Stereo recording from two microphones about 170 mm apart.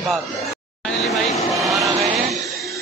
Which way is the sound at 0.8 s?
Centre (ahead or behind).